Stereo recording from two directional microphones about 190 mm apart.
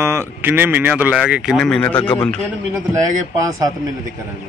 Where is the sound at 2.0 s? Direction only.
20° left (ahead or behind).